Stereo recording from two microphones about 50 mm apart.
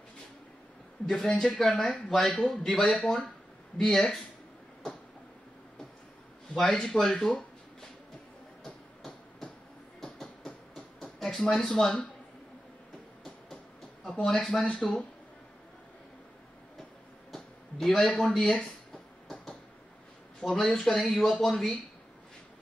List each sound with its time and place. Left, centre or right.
1.0 s speech: centre
6.5 s speech: centre
8.6 s hammer: centre
9.9 s a sound: centre
14.0 s speech: centre
17.3 s a sound: centre
18.0 s speech: centre
19.2 s a sound: centre
20.4 s speech: centre